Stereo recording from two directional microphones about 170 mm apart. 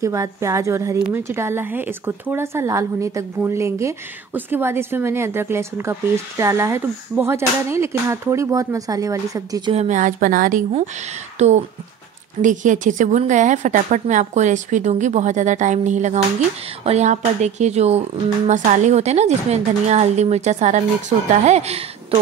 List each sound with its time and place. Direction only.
0.0 s a woman's voice: 20° right (ahead or behind)
9.8 s a woman's voice: 45° right (ahead or behind)
11.3 s a woman's voice: 40° right (ahead or behind)
22.1 s a sound: 35° right (ahead or behind)